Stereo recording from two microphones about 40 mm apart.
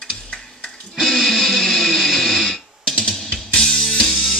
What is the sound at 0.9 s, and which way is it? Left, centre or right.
Music, centre.